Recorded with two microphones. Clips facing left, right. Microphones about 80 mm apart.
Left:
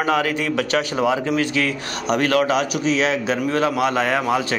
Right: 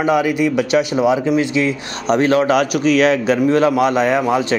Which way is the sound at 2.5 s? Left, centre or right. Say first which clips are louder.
Right 5 dB; right.